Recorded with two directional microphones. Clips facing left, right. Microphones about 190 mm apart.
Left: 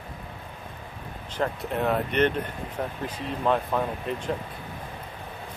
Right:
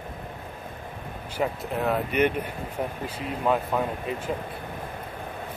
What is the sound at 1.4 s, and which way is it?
Speech, centre (ahead or behind).